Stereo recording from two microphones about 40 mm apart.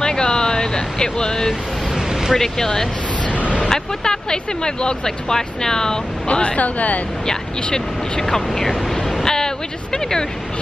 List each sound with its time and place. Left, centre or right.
0.0 s vehicle: centre
2.3 s speech: centre
6.2 s speech: left
7.2 s speech: centre
9.2 s a sound: centre